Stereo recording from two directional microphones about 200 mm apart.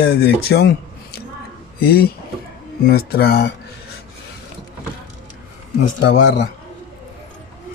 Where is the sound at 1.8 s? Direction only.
50° left (ahead or behind).